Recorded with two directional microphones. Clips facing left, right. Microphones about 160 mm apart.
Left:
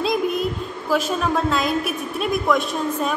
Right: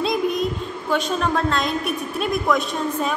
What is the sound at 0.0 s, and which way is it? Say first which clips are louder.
A woman's voice: even; centre (ahead or behind).